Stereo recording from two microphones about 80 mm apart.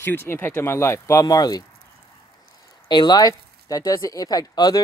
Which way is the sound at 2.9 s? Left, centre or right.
Left.